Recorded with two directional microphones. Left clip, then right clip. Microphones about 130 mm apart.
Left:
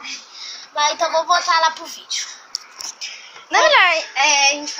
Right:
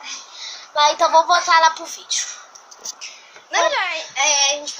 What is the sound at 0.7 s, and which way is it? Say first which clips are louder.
Speech: right 4 dB; 25° right (ahead or behind).